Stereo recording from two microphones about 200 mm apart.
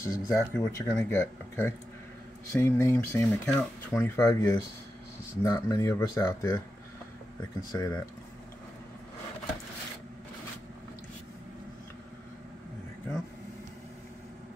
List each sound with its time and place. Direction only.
0.0 s speech: 15° left (ahead or behind)
7.7 s speech: 15° left (ahead or behind)